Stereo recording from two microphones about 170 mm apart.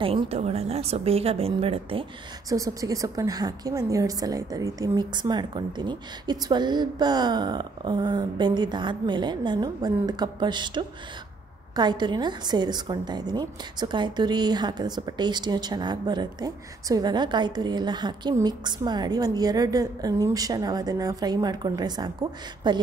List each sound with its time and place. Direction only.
0.0 s a woman's voice: 30° right (ahead or behind)
2.5 s a woman's voice: 20° right (ahead or behind)